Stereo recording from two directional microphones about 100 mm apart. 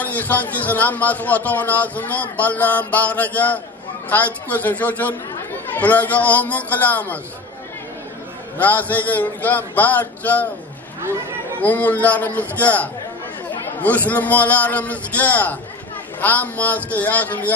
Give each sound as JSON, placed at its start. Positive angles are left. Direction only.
{"t": 0.0, "sound": "a man's voice", "side_deg": 15}
{"t": 8.5, "sound": "a man's voice", "side_deg": 15}
{"t": 11.6, "sound": "a man's voice", "side_deg": 15}